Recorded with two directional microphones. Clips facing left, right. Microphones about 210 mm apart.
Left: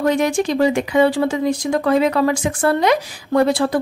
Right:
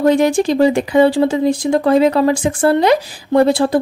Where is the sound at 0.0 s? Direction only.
30° right (ahead or behind).